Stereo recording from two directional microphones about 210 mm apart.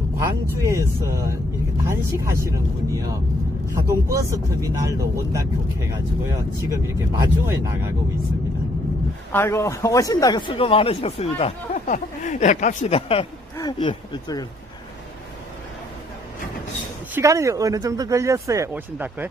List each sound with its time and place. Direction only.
0.2 s speech: 15° right (ahead or behind)
9.3 s speech: 10° left (ahead or behind)
17.1 s speech: 15° right (ahead or behind)